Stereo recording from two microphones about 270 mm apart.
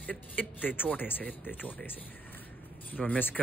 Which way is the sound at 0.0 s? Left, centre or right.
Centre.